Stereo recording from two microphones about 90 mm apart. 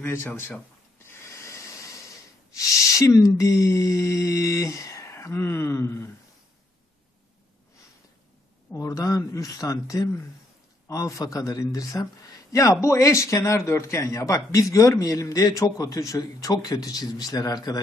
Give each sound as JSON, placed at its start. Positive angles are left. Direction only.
{"t": 0.0, "sound": "speech", "side_deg": 30}
{"t": 1.4, "sound": "snort", "side_deg": 35}
{"t": 8.7, "sound": "speech", "side_deg": 40}